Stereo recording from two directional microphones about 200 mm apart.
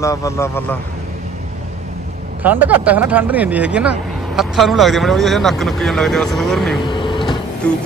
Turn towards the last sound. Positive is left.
turn(degrees=5)  # may be behind; listen again after turning